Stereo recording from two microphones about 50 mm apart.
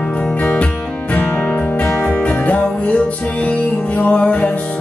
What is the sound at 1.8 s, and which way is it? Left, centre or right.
Music, left.